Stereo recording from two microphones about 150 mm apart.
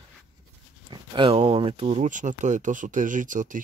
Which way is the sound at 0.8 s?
35° right (ahead or behind).